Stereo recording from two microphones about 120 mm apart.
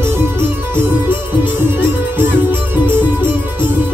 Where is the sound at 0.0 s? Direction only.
20° right (ahead or behind).